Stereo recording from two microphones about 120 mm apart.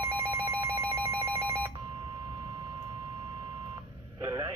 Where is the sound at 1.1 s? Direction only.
25° right (ahead or behind).